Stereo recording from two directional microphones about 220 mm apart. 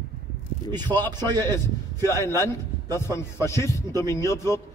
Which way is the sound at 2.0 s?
10° left (ahead or behind).